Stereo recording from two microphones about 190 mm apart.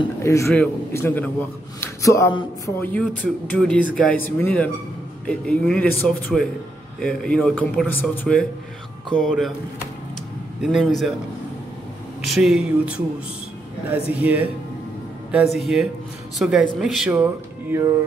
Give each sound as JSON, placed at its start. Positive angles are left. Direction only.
{"t": 0.2, "sound": "a man's voice", "side_deg": 15}
{"t": 10.6, "sound": "a man's voice", "side_deg": 0}
{"t": 12.4, "sound": "a man's voice", "side_deg": -5}
{"t": 14.1, "sound": "music", "side_deg": -10}
{"t": 15.6, "sound": "a man's voice", "side_deg": -5}
{"t": 16.8, "sound": "music", "side_deg": 0}